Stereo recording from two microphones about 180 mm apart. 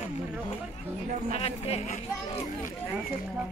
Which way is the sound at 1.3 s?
35° left (ahead or behind).